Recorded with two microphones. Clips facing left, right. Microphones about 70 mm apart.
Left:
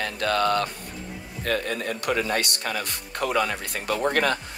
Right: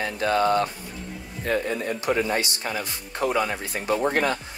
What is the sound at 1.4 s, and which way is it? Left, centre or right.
Speech, left.